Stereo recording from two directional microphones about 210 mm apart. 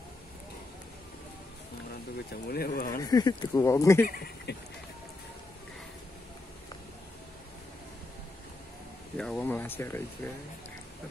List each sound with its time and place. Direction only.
2.5 s speech: 45° left (ahead or behind)
3.0 s speech: 20° left (ahead or behind)
4.0 s speech: 45° left (ahead or behind)
9.1 s speech: 5° left (ahead or behind)